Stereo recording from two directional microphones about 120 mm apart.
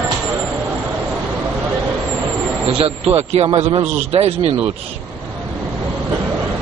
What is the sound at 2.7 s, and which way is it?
A man's voice, 55° right (ahead or behind).